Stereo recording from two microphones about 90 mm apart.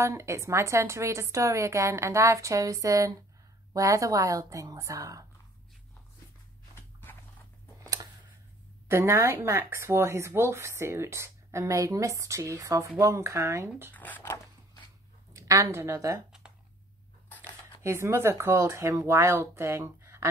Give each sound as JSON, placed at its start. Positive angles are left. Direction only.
{"t": 0.0, "sound": "speech", "side_deg": -35}
{"t": 6.7, "sound": "biting", "side_deg": 25}
{"t": 8.9, "sound": "speech", "side_deg": -30}
{"t": 13.9, "sound": "speech", "side_deg": 20}
{"t": 15.3, "sound": "speech", "side_deg": -35}
{"t": 16.3, "sound": "a sound", "side_deg": -10}
{"t": 17.8, "sound": "speech", "side_deg": -30}